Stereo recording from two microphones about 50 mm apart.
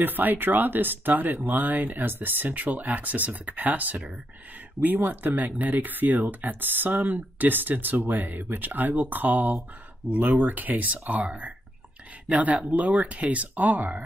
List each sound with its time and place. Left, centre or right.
0.0 s speech: right